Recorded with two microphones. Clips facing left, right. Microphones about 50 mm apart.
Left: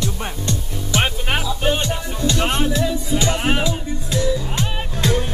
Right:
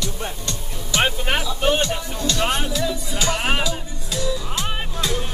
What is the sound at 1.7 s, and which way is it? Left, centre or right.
Music, left.